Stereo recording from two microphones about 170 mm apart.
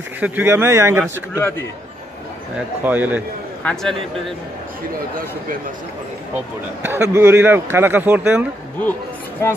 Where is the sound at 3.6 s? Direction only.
5° left (ahead or behind).